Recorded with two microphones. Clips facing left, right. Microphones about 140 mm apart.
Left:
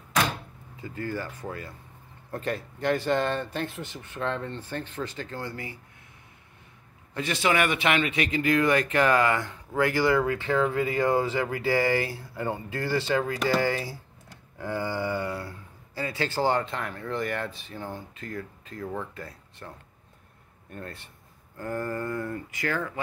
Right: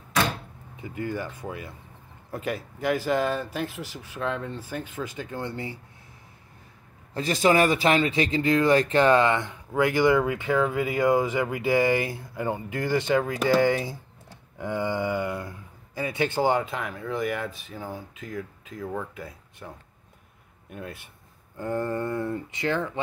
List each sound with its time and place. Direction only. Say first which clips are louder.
0.7 s speech: right 2 dB; 20° right (ahead or behind)
7.2 s speech: right 4 dB; 40° right (ahead or behind); by 19.7 s 10° right (ahead or behind)
20.7 s speech: right 2 dB; 10° right (ahead or behind)
21.5 s speech: right 3 dB; 25° right (ahead or behind)